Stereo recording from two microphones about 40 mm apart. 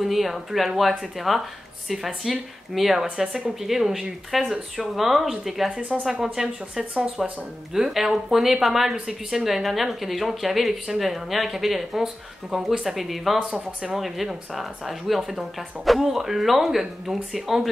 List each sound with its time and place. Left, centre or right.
0.0 s speech: centre
13.4 s speech: right
13.9 s speech: centre